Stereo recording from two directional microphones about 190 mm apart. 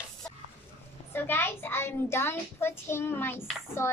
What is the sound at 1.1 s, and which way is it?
A child's voice, 10° left (ahead or behind).